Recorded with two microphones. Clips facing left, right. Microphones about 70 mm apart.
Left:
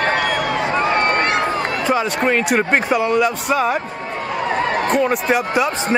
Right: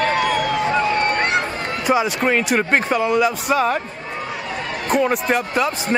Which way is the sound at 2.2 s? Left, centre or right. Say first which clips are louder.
Left 1 dB; centre.